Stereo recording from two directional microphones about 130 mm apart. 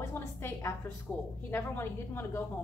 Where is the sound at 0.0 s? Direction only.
20° left (ahead or behind).